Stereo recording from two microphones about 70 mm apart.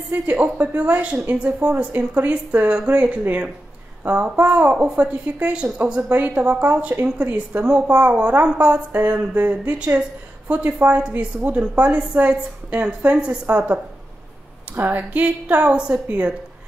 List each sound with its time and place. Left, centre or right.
0.1 s a woman's voice: right
2.7 s a woman's voice: centre
14.8 s a woman's voice: right